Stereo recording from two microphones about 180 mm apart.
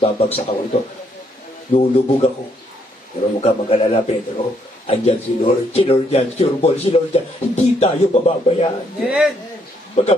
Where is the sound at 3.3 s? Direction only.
35° left (ahead or behind).